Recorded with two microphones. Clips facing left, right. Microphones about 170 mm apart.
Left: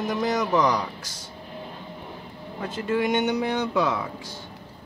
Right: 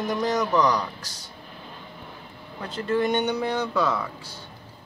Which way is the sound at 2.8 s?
10° left (ahead or behind).